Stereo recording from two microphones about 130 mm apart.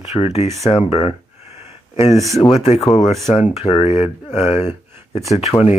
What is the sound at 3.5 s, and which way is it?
Speech, 55° left (ahead or behind).